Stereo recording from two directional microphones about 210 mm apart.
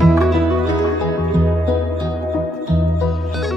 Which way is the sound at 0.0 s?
Centre (ahead or behind).